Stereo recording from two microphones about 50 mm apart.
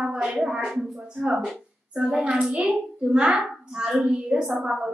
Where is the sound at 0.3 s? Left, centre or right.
Centre.